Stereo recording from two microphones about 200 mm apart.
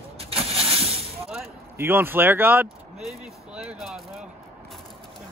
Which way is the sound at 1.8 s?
10° right (ahead or behind).